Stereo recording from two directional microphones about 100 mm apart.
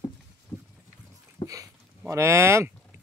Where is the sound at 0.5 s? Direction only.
15° left (ahead or behind).